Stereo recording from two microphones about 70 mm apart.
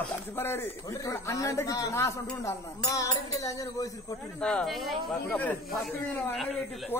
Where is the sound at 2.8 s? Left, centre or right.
Left.